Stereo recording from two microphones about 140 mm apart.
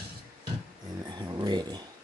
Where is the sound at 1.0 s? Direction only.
30° right (ahead or behind).